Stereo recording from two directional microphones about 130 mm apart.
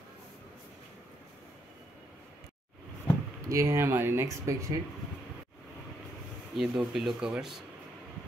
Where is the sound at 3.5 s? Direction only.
20° right (ahead or behind).